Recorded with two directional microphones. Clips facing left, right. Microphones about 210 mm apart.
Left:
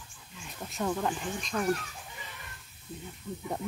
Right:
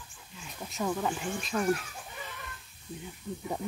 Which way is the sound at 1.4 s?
5° right (ahead or behind).